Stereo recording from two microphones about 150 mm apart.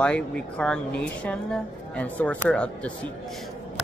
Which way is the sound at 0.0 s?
5° left (ahead or behind).